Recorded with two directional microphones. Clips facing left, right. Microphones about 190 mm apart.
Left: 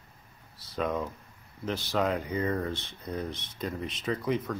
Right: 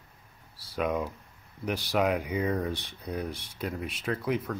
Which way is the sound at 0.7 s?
10° right (ahead or behind).